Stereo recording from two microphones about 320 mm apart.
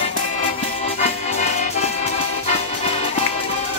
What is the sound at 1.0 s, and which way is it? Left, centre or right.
Music, left.